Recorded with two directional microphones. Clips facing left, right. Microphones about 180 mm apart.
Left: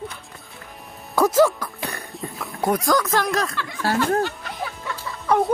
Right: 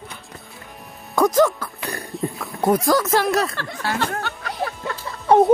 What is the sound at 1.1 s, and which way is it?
Music, 5° left (ahead or behind).